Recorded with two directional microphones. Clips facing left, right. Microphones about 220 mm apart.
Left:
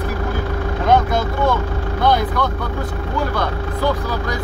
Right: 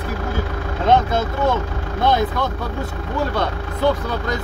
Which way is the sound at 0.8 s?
25° right (ahead or behind).